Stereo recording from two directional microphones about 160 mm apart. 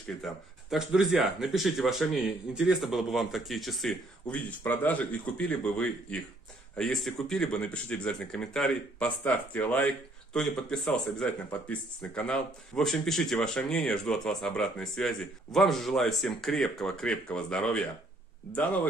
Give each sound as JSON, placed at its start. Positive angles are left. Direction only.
{"t": 0.2, "sound": "speech", "side_deg": 0}